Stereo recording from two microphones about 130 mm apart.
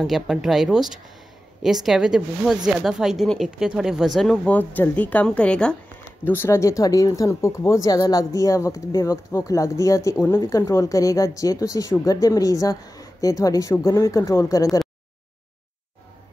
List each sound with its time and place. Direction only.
0.0 s speech: 5° right (ahead or behind); by 14.8 s 25° left (ahead or behind)